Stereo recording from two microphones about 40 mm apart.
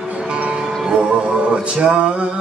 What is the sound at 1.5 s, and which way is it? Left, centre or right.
Mantra, right.